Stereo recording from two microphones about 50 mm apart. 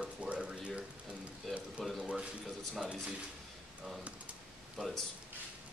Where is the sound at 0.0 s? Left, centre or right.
Right.